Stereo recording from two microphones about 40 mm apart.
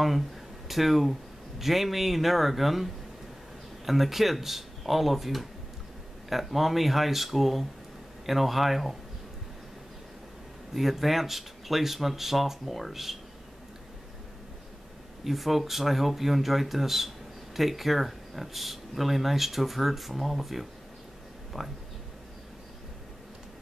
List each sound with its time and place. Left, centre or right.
0.7 s speech: centre
10.7 s speech: centre
15.2 s speech: centre